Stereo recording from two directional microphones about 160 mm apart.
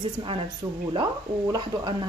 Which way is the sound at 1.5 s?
25° right (ahead or behind).